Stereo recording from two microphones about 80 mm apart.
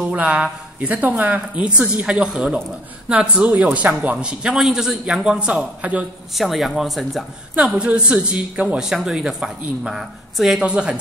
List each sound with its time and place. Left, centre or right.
0.0 s a woman's voice: centre
6.3 s speech: centre
7.5 s a woman's voice: centre